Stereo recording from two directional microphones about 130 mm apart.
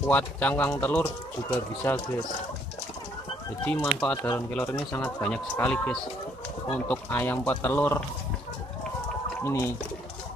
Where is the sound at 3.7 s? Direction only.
15° left (ahead or behind).